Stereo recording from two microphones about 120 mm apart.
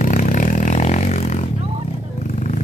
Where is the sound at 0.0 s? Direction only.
90° left; by 1.4 s 65° left (ahead or behind).